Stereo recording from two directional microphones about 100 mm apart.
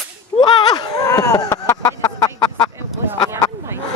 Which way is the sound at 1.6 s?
35° left (ahead or behind).